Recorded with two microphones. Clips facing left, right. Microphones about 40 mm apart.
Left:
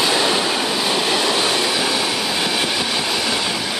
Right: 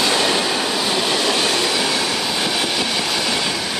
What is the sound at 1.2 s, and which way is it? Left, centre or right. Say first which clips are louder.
Train: even; left.